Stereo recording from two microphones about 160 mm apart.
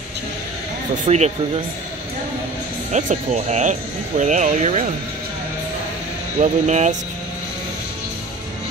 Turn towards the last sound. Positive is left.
turn(degrees=-45)  # may be behind; listen again after turning